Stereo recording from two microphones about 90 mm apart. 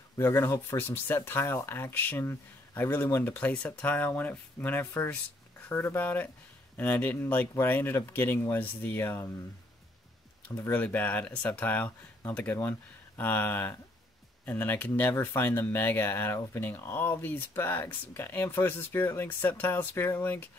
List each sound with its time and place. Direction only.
0.2 s speech: 30° left (ahead or behind)
10.7 s speech: 20° left (ahead or behind)